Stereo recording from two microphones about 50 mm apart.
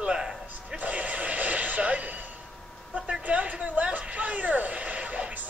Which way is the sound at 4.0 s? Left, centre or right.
Right.